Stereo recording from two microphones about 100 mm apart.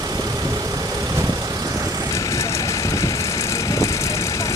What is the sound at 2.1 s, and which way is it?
Vehicle, 30° left (ahead or behind).